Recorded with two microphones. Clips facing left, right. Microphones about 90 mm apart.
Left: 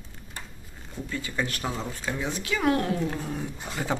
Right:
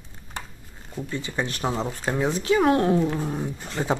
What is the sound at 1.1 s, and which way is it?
Speech, 25° right (ahead or behind).